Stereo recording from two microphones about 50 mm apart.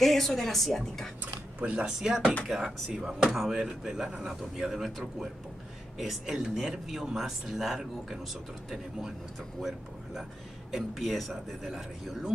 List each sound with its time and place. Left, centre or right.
0.0 s speech: centre
1.2 s a sound: right
1.9 s speech: centre